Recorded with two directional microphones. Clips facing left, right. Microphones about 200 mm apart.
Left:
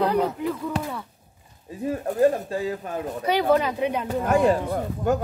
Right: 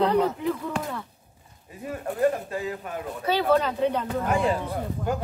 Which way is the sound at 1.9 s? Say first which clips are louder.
Left 4 dB; 35° left (ahead or behind).